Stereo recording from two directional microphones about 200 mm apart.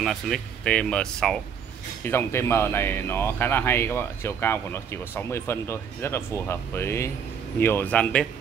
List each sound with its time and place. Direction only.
0.0 s speech: centre (ahead or behind)